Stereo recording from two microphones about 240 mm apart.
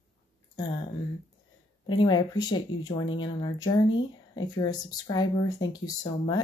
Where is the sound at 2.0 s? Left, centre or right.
Centre.